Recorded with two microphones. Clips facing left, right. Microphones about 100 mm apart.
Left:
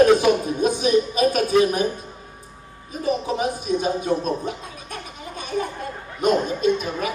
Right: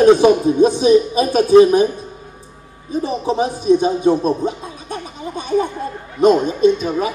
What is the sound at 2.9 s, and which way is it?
A man's voice, 25° right (ahead or behind).